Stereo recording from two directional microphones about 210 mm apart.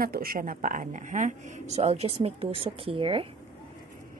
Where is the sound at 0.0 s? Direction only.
45° right (ahead or behind); by 3.3 s 25° right (ahead or behind).